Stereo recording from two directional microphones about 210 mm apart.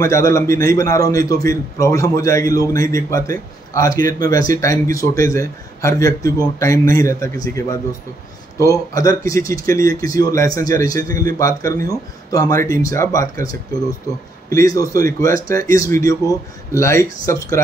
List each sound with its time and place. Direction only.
0.0 s a man's voice: 15° left (ahead or behind)